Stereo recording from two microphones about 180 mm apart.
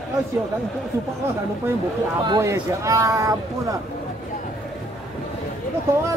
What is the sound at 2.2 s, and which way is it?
Speech, 20° right (ahead or behind).